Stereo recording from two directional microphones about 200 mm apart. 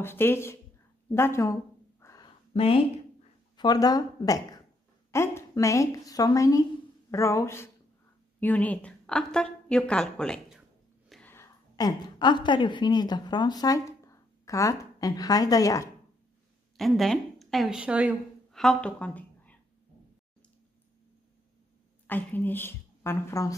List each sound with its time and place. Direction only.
0.0 s speech: 10° left (ahead or behind)
1.1 s a sound: 15° left (ahead or behind)
2.5 s a woman's voice: 30° left (ahead or behind)
16.7 s a woman's voice: centre (ahead or behind)
22.0 s a woman's voice: 10° left (ahead or behind)